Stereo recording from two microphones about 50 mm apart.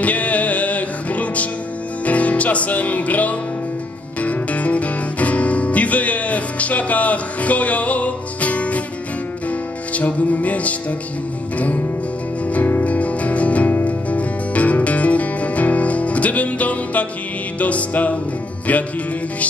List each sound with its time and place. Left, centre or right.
0.0 s music: left